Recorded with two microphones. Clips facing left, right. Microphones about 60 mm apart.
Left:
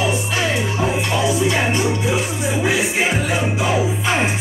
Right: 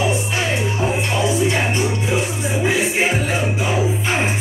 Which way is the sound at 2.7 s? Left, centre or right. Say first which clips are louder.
Right 1 dB; right.